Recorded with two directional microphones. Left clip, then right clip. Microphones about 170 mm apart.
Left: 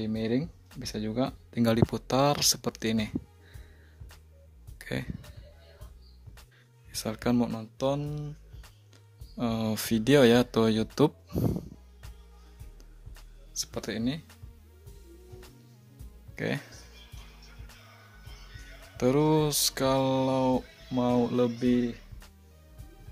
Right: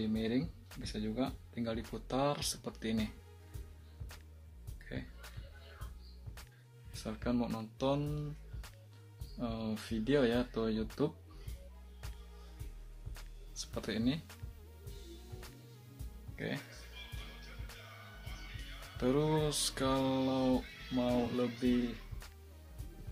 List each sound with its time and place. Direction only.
0.0 s speech: 55° left (ahead or behind)
4.7 s music: 60° left (ahead or behind)
6.9 s speech: 60° left (ahead or behind)
7.7 s speech: 35° left (ahead or behind)
9.4 s speech: 55° left (ahead or behind)
13.6 s speech: 35° left (ahead or behind)
16.3 s speech: 60° left (ahead or behind)
18.9 s mantra: 45° left (ahead or behind)